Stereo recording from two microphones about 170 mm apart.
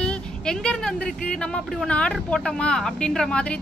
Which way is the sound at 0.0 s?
5° left (ahead or behind).